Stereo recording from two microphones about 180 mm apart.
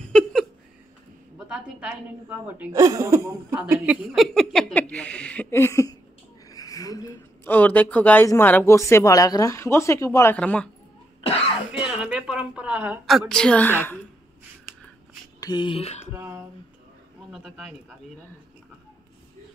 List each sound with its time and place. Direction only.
0.0 s a sound: 5° left (ahead or behind)
1.5 s a woman's voice: 5° right (ahead or behind)
4.1 s a sound: centre (ahead or behind); by 5.9 s 15° left (ahead or behind)
6.5 s speech: 20° left (ahead or behind)
11.1 s cough: 30° left (ahead or behind)
11.8 s a woman's voice: 5° right (ahead or behind); by 14.0 s 10° left (ahead or behind)
15.4 s speech: 25° left (ahead or behind)
16.1 s a woman's voice: 10° right (ahead or behind)